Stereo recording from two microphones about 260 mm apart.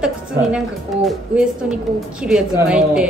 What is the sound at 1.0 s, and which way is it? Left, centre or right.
A woman's voice, centre.